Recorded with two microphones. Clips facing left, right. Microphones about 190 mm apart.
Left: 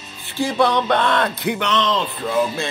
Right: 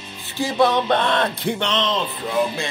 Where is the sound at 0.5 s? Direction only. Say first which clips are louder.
Even; 25° right (ahead or behind).